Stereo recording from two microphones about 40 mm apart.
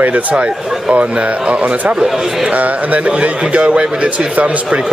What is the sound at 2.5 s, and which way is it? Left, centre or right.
Speech, right.